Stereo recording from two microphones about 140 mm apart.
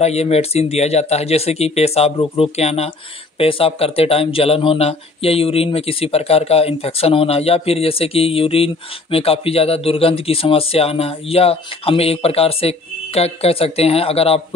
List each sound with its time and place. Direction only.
0.0 s speech: 50° left (ahead or behind)